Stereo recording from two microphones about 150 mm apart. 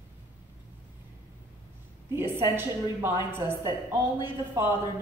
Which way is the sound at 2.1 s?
15° right (ahead or behind).